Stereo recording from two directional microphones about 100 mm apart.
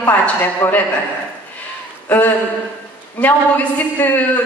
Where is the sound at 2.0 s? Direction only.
20° left (ahead or behind).